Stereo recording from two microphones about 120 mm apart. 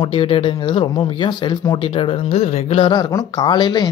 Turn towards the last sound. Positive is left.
turn(degrees=35)  # may be behind; listen again after turning